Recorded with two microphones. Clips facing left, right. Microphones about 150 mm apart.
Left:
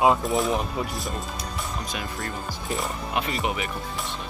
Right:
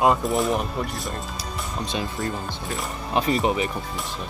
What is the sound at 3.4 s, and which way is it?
Speech, 35° right (ahead or behind).